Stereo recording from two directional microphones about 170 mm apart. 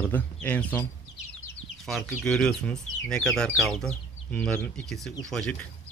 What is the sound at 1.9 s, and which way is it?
Speech, centre (ahead or behind).